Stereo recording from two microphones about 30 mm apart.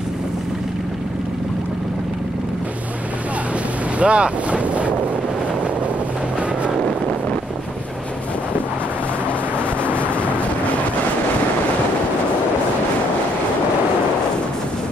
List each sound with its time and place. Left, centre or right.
4.0 s boat: right